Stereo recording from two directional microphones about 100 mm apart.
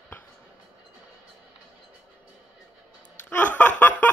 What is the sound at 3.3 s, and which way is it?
Snicker, 15° left (ahead or behind).